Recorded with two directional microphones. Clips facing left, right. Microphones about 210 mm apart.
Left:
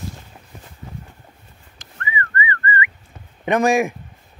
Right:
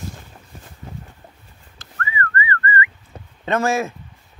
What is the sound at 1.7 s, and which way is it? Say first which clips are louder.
Whistling: right 1 dB; 15° left (ahead or behind).